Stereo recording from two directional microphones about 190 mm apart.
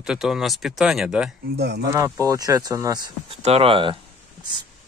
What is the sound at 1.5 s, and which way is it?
Speech, 60° right (ahead or behind).